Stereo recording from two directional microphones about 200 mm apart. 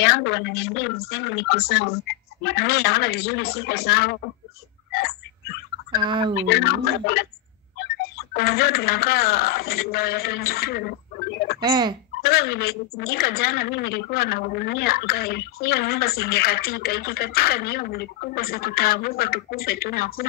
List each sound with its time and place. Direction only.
0.0 s a woman's voice: 60° left (ahead or behind)
4.9 s turkey: 50° left (ahead or behind)
6.0 s speech: 25° right (ahead or behind)
6.4 s speech: 50° left (ahead or behind)
11.6 s speech: 20° right (ahead or behind)
12.2 s speech: 50° left (ahead or behind)